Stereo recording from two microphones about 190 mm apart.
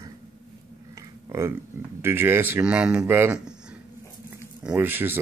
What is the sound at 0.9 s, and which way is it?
Speech, 15° right (ahead or behind).